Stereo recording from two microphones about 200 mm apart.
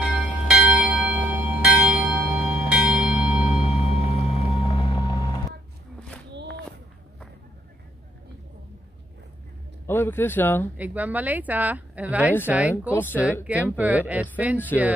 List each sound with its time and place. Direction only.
0.0 s church bell: 5° right (ahead or behind)
1.6 s bell: 5° right (ahead or behind)
2.4 s bell: 30° left (ahead or behind)
2.7 s bell: 5° right (ahead or behind)
3.3 s music: 35° left (ahead or behind)
9.8 s speech: 10° left (ahead or behind)
10.8 s a woman's voice: 10° right (ahead or behind)
12.9 s speech: 10° left (ahead or behind)
13.5 s a woman's voice: 5° right (ahead or behind)